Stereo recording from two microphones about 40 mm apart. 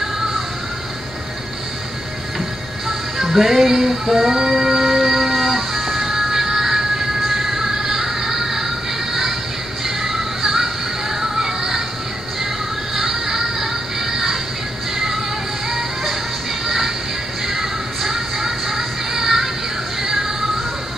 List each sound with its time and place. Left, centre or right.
3.3 s music: centre
9.8 s music: centre
12.9 s music: centre